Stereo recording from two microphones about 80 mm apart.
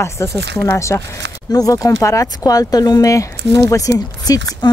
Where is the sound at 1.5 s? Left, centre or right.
Left.